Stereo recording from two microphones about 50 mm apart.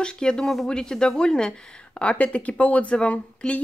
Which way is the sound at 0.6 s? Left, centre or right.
Centre.